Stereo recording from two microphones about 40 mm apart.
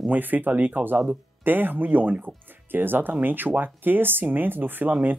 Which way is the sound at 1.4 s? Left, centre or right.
Right.